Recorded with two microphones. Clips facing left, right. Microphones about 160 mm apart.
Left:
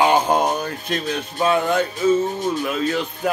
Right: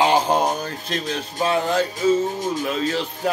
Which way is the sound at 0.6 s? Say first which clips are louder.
Left 2 dB; 30° right (ahead or behind).